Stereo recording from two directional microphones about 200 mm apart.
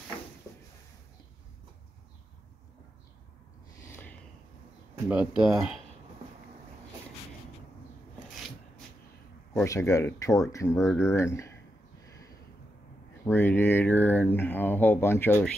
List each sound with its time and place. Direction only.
3.9 s a sound: 10° left (ahead or behind)
5.0 s speech: 5° right (ahead or behind)
9.7 s speech: 15° left (ahead or behind)
13.2 s speech: 10° left (ahead or behind)